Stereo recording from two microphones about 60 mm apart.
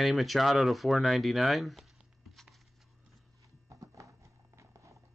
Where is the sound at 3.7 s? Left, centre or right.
Right.